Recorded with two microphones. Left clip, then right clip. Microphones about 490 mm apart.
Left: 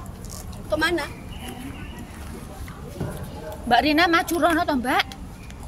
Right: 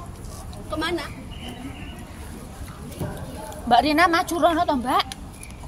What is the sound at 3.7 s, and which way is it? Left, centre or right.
Speech, left.